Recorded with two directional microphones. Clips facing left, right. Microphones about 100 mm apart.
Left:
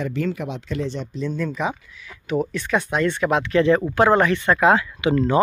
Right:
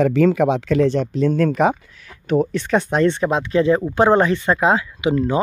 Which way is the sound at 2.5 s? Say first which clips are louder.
Right 4 dB; 35° right (ahead or behind).